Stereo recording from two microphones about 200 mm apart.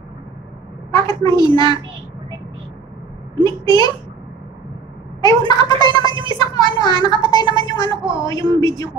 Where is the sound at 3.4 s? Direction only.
20° left (ahead or behind).